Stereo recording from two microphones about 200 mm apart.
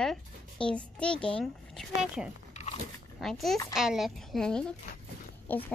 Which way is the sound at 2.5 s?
35° left (ahead or behind).